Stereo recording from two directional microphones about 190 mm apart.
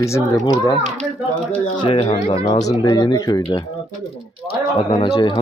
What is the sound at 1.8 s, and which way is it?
Speech, 30° left (ahead or behind).